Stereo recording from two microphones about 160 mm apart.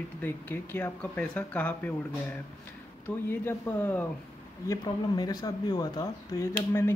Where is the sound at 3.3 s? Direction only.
15° left (ahead or behind).